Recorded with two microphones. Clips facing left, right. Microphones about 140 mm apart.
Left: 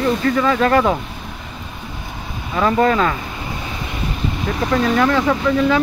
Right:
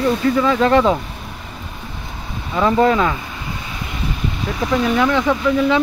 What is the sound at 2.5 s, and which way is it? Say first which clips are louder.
Speech: right 1 dB; 10° right (ahead or behind).